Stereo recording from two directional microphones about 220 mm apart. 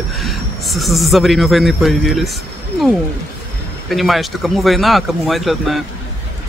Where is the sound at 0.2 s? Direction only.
Centre (ahead or behind).